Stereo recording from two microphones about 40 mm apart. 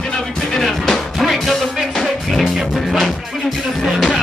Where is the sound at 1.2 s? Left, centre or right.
Centre.